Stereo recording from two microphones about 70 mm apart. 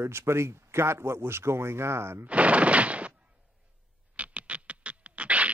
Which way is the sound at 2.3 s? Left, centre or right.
Centre.